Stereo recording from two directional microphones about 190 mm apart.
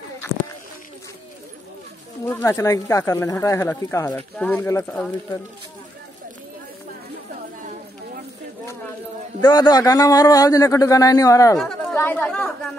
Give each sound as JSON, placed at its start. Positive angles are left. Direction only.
{"t": 2.2, "sound": "speech", "side_deg": 15}
{"t": 9.4, "sound": "speech", "side_deg": 20}
{"t": 11.5, "sound": "speech", "side_deg": 0}